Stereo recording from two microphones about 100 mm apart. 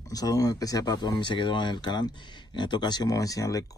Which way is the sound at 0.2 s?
35° left (ahead or behind).